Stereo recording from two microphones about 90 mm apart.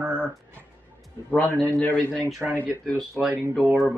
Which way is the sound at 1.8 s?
15° left (ahead or behind).